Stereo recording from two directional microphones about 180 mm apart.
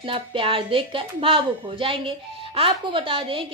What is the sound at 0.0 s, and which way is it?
Speech, 30° right (ahead or behind).